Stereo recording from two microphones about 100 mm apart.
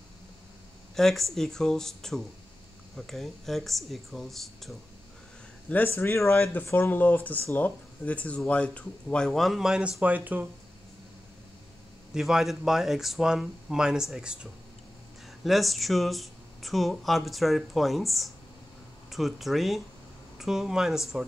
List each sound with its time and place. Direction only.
0.9 s speech: 5° left (ahead or behind)
5.7 s speech: 15° left (ahead or behind); by 10.4 s 15° right (ahead or behind)
12.1 s speech: 5° right (ahead or behind)